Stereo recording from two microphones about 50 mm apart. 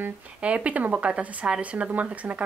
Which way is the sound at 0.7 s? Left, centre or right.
Right.